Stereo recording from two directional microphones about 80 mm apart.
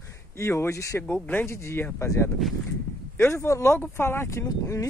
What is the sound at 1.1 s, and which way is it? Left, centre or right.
Speech, left.